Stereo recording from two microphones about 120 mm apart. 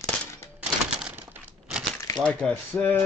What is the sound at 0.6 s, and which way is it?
Typewriter, 10° right (ahead or behind).